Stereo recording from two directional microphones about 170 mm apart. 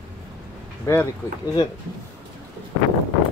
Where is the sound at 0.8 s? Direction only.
15° left (ahead or behind).